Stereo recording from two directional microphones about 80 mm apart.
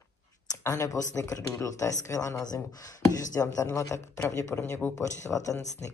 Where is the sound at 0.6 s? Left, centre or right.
Left.